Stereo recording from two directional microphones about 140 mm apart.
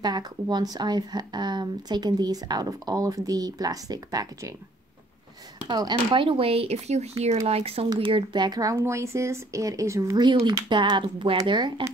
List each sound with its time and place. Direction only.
0.0 s speech: 30° right (ahead or behind)
5.7 s speech: 30° right (ahead or behind)